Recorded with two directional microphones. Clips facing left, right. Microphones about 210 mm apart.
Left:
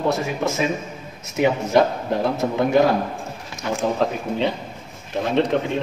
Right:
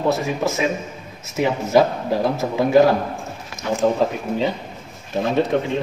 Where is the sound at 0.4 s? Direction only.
5° right (ahead or behind).